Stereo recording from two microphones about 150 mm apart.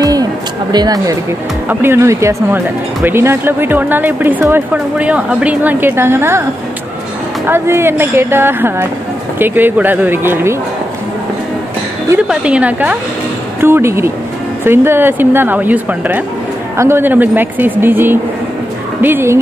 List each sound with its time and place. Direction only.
0.0 s a sound: 25° right (ahead or behind)
1.7 s speech: 15° right (ahead or behind)
7.4 s speech: 15° right (ahead or behind)
12.3 s speech: 10° right (ahead or behind)